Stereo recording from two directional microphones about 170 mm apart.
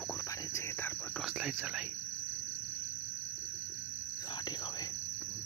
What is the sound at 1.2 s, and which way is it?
Cricket, 5° right (ahead or behind).